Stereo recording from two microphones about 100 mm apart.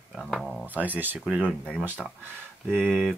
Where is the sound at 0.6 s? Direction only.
15° right (ahead or behind).